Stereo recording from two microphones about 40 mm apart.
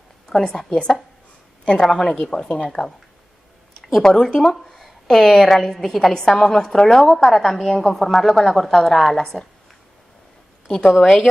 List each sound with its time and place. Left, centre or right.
0.3 s a woman's voice: centre
1.9 s a woman's voice: centre
2.3 s speech: left
4.0 s a woman's voice: centre
11.0 s a woman's voice: centre